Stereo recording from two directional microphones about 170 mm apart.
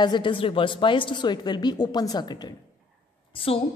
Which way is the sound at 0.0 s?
25° left (ahead or behind).